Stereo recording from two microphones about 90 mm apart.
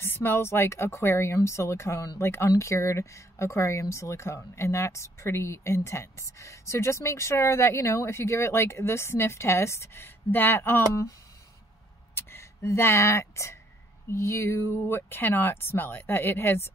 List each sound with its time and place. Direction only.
0.0 s speech: 25° left (ahead or behind)
12.2 s speech: 30° left (ahead or behind)